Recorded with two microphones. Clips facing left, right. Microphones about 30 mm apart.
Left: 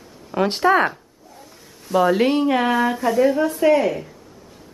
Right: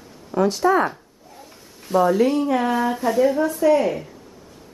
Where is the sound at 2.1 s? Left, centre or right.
Left.